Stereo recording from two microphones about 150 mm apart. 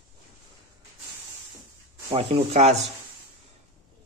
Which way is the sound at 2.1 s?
45° right (ahead or behind).